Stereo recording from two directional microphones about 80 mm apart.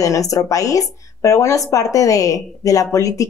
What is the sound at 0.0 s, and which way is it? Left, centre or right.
Speech, left.